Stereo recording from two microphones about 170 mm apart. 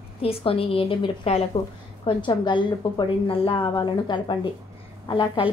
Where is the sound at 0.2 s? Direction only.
35° left (ahead or behind).